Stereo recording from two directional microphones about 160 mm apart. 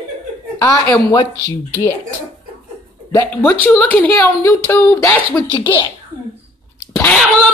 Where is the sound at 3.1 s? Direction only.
15° left (ahead or behind).